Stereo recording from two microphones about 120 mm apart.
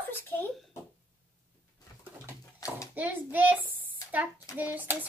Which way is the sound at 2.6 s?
30° left (ahead or behind).